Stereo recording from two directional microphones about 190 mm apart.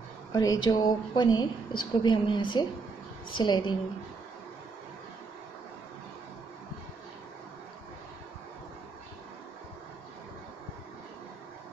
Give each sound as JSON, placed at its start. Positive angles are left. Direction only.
{"t": 0.3, "sound": "a woman's voice", "side_deg": 20}